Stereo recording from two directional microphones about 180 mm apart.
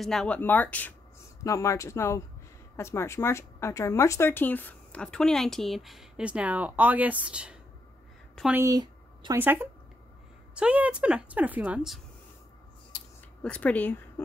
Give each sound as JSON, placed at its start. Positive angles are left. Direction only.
{"t": 0.0, "sound": "a woman's voice", "side_deg": 0}
{"t": 8.6, "sound": "a sound", "side_deg": -20}
{"t": 9.4, "sound": "a woman's voice", "side_deg": -10}
{"t": 13.4, "sound": "speech", "side_deg": 5}